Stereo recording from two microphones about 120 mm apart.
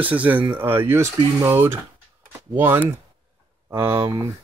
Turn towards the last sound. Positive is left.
turn(degrees=-20)  # may be behind; listen again after turning